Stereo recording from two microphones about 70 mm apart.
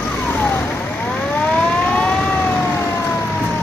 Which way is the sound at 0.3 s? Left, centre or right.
Left.